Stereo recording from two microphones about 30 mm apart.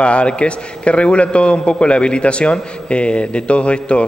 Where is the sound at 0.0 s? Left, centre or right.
Left.